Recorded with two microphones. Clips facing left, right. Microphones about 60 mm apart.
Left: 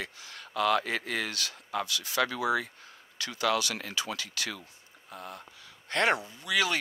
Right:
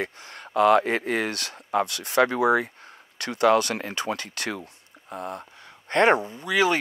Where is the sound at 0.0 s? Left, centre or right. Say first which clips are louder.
Right 8 dB; right.